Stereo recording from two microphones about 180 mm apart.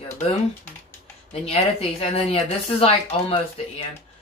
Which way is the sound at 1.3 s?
35° left (ahead or behind).